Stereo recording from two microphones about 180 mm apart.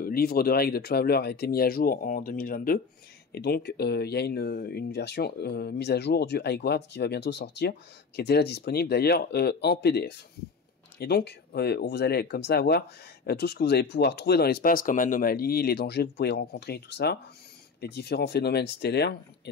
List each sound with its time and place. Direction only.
0.0 s speech: 55° left (ahead or behind)
3.3 s speech: 65° left (ahead or behind)